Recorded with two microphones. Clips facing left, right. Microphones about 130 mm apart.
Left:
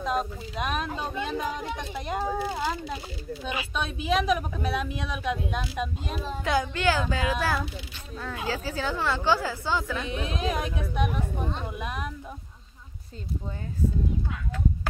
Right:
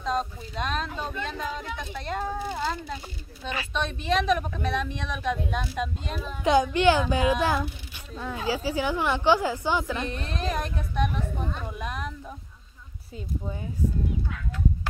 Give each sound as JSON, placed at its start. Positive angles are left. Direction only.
{"t": 0.0, "sound": "speech", "side_deg": 5}
{"t": 6.4, "sound": "a child's voice", "side_deg": -20}
{"t": 10.0, "sound": "speech", "side_deg": 5}